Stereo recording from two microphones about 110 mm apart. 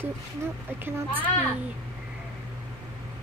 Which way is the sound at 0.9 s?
20° right (ahead or behind).